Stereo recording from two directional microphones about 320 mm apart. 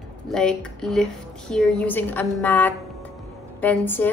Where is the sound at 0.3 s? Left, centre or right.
Centre.